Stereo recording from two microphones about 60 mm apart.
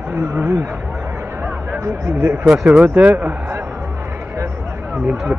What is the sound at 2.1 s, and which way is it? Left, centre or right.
Speech, right.